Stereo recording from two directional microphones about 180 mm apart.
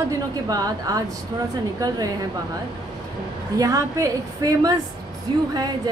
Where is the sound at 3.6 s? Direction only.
20° right (ahead or behind).